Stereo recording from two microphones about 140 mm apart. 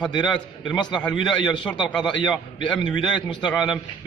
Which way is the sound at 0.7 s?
30° left (ahead or behind).